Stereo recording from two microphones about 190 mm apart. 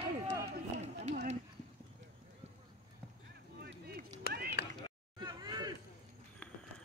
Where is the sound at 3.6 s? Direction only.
55° right (ahead or behind).